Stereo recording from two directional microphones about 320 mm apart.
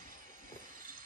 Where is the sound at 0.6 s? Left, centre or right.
Right.